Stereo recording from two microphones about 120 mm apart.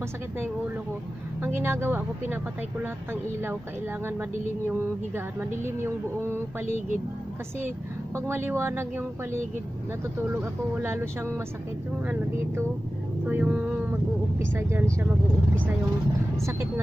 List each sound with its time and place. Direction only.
1.4 s speech: 20° right (ahead or behind)
4.6 s speech: 20° right (ahead or behind)
8.3 s speech: 20° right (ahead or behind)
13.3 s speech: 10° right (ahead or behind)
16.3 s speech: 25° right (ahead or behind)